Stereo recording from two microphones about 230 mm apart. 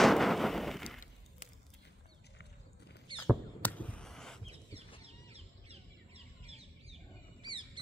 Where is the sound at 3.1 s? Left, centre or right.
Centre.